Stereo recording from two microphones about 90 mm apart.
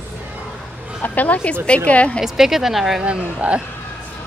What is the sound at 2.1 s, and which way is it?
Speech, 5° right (ahead or behind).